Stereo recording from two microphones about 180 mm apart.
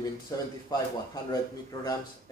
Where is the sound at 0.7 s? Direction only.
20° left (ahead or behind).